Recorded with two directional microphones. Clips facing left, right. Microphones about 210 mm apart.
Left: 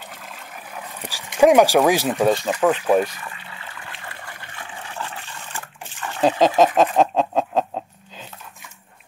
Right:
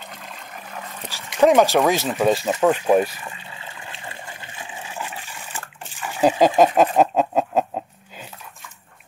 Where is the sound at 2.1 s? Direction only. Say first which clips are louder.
Left 1 dB; 5° right (ahead or behind).